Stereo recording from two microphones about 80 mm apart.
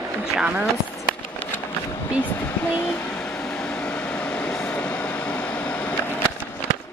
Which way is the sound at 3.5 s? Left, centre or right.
Centre.